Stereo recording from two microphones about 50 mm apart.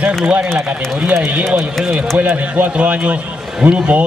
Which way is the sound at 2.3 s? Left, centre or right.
Right.